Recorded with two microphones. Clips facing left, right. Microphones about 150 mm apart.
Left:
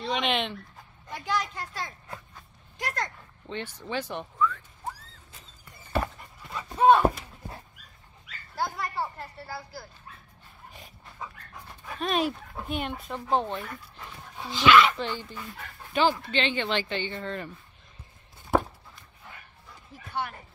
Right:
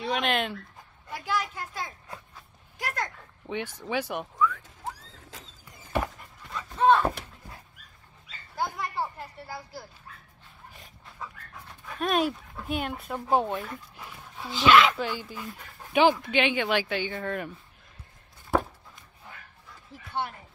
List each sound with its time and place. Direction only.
0.0 s speech: centre (ahead or behind)
2.0 s a sound: 5° right (ahead or behind)
3.8 s speech: 10° right (ahead or behind)
5.3 s a sound: 90° right
6.1 s dog: 5° left (ahead or behind)
6.7 s speech: 15° left (ahead or behind)
8.7 s speech: 15° right (ahead or behind)
10.7 s dog: centre (ahead or behind)
12.6 s speech: centre (ahead or behind)
13.9 s dog: 10° right (ahead or behind)
14.4 s speech: 5° right (ahead or behind)
18.5 s walk: centre (ahead or behind)